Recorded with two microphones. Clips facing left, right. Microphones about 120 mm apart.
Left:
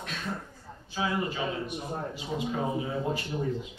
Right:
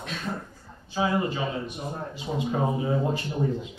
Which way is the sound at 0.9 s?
25° right (ahead or behind).